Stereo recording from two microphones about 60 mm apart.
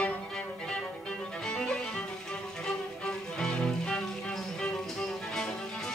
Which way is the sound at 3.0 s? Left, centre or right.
Centre.